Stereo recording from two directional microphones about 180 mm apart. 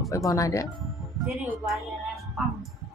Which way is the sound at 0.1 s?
20° left (ahead or behind).